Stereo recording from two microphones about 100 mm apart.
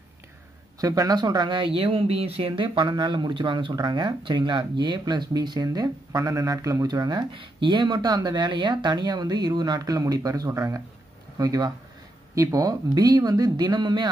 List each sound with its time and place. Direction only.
0.7 s speech: 35° right (ahead or behind)